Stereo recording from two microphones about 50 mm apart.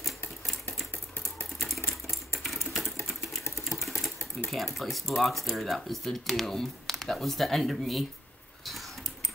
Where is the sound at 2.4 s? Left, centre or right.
Centre.